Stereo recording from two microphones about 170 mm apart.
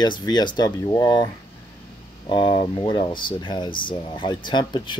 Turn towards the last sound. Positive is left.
turn(degrees=25)  # may be behind; listen again after turning